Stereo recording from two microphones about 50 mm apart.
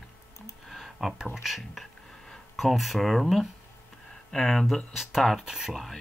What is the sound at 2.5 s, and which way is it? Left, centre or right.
Speech, centre.